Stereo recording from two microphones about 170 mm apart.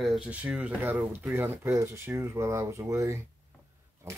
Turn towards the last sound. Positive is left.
turn(degrees=-15)  # may be behind; listen again after turning